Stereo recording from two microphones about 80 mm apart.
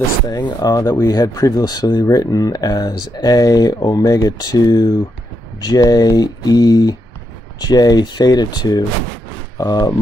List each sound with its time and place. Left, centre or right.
0.4 s speech: left